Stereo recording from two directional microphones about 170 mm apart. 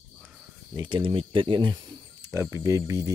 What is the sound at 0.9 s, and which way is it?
Speech, 30° right (ahead or behind).